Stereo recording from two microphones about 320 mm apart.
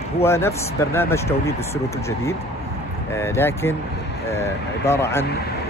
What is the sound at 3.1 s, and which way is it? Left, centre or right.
Speech, centre.